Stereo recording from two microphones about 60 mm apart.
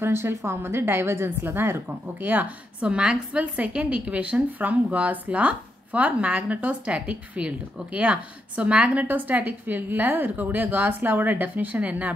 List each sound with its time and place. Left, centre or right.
0.0 s a woman's voice: right
2.9 s speech: centre